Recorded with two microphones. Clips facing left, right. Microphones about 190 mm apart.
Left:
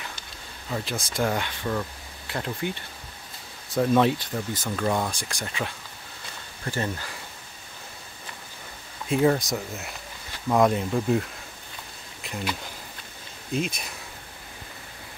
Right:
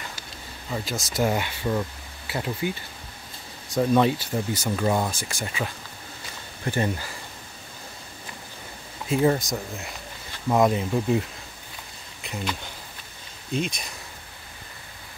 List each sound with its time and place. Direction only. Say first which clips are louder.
0.7 s speech: even; 5° right (ahead or behind)
6.6 s speech: right 4 dB; 15° right (ahead or behind)
9.1 s speech: even; centre (ahead or behind)
12.2 s a sound: even; centre (ahead or behind)
13.5 s speech: even; 5° left (ahead or behind)